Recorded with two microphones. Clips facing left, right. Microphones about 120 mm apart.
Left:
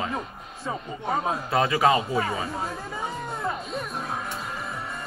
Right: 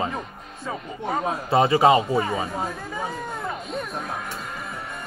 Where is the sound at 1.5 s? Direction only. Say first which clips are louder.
Right 5 dB; 25° right (ahead or behind).